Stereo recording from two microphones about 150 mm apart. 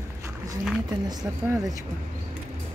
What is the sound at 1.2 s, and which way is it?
Speech, 25° right (ahead or behind).